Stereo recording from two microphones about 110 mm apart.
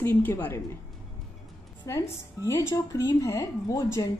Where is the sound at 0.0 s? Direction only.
20° left (ahead or behind).